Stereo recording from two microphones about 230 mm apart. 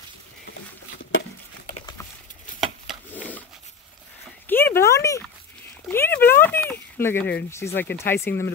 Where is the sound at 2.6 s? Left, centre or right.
Centre.